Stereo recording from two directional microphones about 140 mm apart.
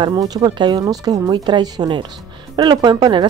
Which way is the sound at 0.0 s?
25° right (ahead or behind).